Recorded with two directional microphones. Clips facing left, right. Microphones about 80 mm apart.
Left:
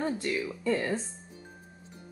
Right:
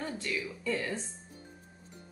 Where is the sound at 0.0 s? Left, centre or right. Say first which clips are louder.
Left 5 dB; left.